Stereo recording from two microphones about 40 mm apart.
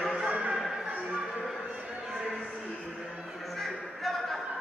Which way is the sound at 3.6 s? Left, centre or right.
Centre.